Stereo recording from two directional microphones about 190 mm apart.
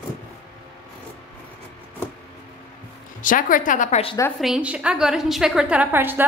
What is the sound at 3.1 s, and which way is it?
A woman's voice, 45° left (ahead or behind).